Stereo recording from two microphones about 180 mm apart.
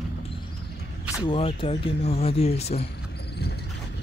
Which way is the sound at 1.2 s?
30° left (ahead or behind).